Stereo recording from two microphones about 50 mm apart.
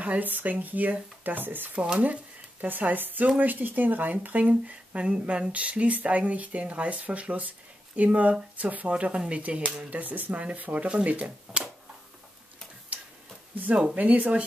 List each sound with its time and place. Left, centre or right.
0.0 s speech: right
1.8 s speech: right
8.9 s speech: centre
9.8 s speech: right
13.9 s speech: right